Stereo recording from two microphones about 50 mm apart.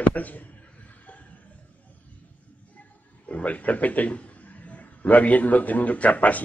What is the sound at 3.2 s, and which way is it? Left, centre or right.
A man's voice, left.